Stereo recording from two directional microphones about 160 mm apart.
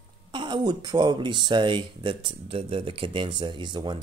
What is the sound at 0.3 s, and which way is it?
Speech, 30° right (ahead or behind).